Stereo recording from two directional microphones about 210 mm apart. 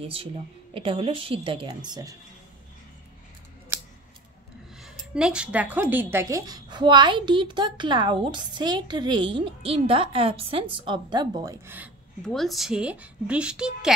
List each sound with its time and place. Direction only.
0.0 s speech: 25° right (ahead or behind)
4.7 s speech: 5° right (ahead or behind)
12.2 s a woman's voice: centre (ahead or behind)